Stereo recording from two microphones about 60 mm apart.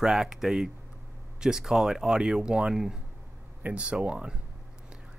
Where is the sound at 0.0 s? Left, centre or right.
Centre.